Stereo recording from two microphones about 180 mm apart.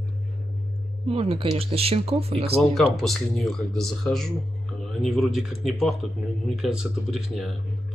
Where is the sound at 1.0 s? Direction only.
30° right (ahead or behind).